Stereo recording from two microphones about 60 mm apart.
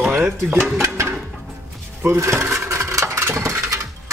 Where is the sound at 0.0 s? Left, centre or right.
Right.